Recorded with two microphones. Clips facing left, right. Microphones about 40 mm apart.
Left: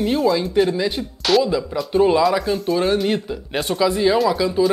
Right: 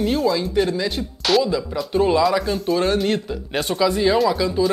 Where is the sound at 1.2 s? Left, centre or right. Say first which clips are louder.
Left 1 dB; centre.